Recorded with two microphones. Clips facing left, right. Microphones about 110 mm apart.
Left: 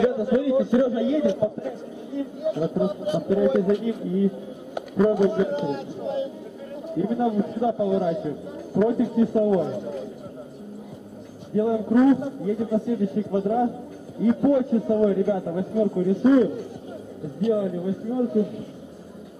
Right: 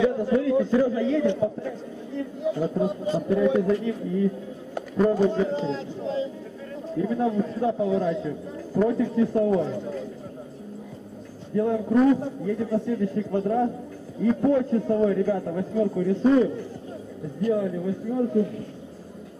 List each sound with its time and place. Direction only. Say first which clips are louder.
0.0 s a man's voice: left 1 dB; 15° left (ahead or behind)
11.5 s a man's voice: left 1 dB; 15° left (ahead or behind)
11.8 s a man's voice: left 2 dB; 5° left (ahead or behind)